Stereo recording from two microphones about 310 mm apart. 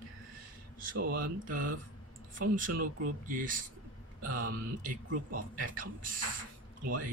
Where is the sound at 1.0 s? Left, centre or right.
Right.